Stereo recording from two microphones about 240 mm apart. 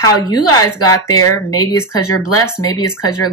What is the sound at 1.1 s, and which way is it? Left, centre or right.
Speech, centre.